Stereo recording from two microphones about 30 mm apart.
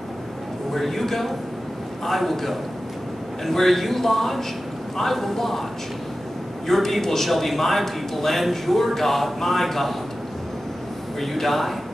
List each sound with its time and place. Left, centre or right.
0.7 s a man's voice: centre
6.7 s a man's voice: centre
11.1 s a man's voice: centre